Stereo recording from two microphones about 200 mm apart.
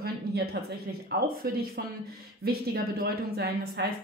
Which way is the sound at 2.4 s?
50° right (ahead or behind).